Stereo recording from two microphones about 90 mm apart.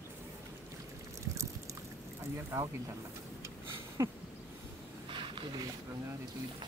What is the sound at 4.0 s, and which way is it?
Speech, 35° right (ahead or behind).